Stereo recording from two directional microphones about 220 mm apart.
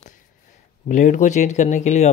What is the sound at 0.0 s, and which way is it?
Speech, 35° left (ahead or behind).